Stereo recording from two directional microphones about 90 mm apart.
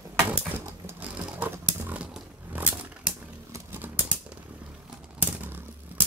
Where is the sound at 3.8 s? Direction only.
15° right (ahead or behind).